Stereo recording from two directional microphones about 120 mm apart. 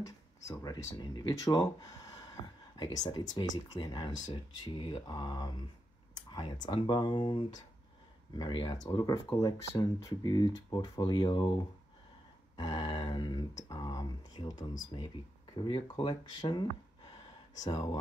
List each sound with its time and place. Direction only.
0.0 s speech: 30° left (ahead or behind)
12.5 s speech: 35° left (ahead or behind)
15.5 s speech: 45° left (ahead or behind)
17.6 s speech: 35° left (ahead or behind)